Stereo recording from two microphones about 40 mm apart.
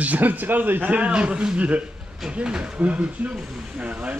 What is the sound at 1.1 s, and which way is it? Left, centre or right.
A man's voice, right.